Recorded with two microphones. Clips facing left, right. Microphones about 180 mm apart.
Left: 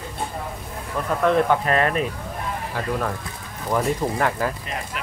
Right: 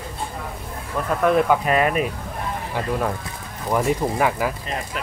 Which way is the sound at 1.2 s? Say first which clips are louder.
Right 1 dB; 10° right (ahead or behind).